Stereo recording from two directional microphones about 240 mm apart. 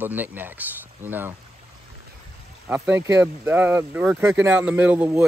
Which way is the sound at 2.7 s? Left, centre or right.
Centre.